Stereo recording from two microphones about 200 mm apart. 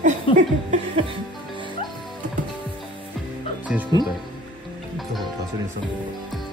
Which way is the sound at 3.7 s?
5° right (ahead or behind).